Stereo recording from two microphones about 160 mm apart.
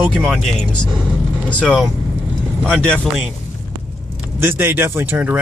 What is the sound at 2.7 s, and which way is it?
Speech, 5° left (ahead or behind).